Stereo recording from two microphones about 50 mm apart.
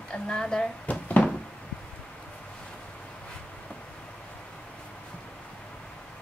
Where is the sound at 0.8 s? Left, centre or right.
Left.